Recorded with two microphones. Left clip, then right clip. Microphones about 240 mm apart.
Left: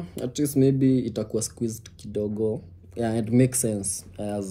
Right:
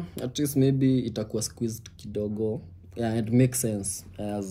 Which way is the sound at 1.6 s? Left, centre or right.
Left.